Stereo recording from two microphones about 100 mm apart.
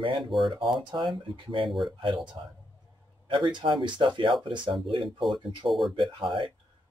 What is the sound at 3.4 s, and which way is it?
Speech, 60° right (ahead or behind).